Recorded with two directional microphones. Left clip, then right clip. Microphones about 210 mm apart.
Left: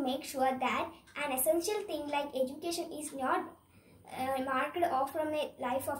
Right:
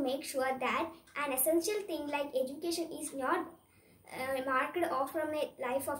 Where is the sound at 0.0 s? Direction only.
20° right (ahead or behind).